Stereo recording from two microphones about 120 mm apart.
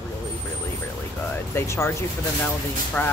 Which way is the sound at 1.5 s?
25° left (ahead or behind).